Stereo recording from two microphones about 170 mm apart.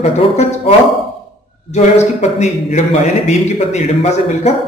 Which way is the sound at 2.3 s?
40° left (ahead or behind).